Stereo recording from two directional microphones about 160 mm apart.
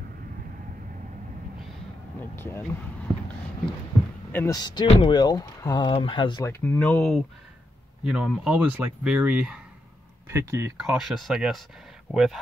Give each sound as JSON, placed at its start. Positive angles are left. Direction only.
{"t": 2.3, "sound": "speech", "side_deg": 15}
{"t": 4.3, "sound": "speech", "side_deg": 10}
{"t": 4.6, "sound": "speech", "side_deg": 25}
{"t": 6.4, "sound": "speech", "side_deg": 15}
{"t": 10.3, "sound": "speech", "side_deg": -15}
{"t": 10.8, "sound": "speech", "side_deg": 0}